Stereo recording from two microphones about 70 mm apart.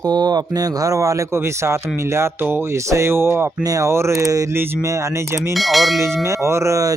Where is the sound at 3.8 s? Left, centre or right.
Right.